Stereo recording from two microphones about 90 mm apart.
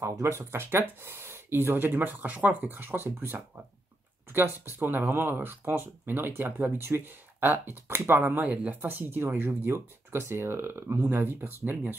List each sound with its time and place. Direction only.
0.0 s speech: 35° right (ahead or behind)
4.7 s speech: 20° right (ahead or behind)